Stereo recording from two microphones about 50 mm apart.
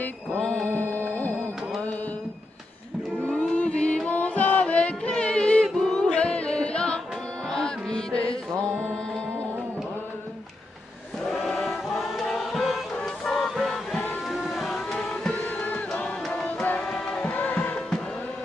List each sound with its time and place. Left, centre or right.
0.4 s mantra: centre
0.7 s music: left
3.2 s music: left
11.2 s music: centre
12.9 s music: centre
14.3 s a sound: centre
15.0 s music: centre
15.3 s music: left
16.0 s a sound: left
16.9 s music: centre
17.3 s music: left
17.6 s music: centre